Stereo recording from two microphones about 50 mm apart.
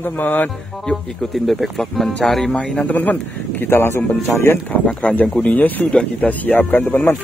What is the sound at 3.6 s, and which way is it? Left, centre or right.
Speech, left.